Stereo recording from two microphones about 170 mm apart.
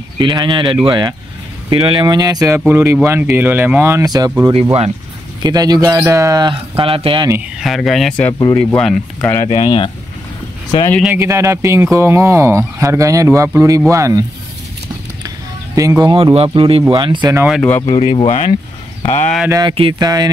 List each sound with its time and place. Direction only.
0.2 s speech: 25° right (ahead or behind)
7.5 s speech: centre (ahead or behind)
8.3 s speech: 20° left (ahead or behind)
8.5 s speech: 5° left (ahead or behind)
9.5 s speech: 30° left (ahead or behind)
11.1 s speech: 15° right (ahead or behind)
15.2 s a sound: 20° right (ahead or behind)
16.4 s speech: 30° right (ahead or behind)
17.5 s speech: 5° left (ahead or behind)
17.9 s speech: 30° left (ahead or behind)
19.7 s speech: 30° right (ahead or behind)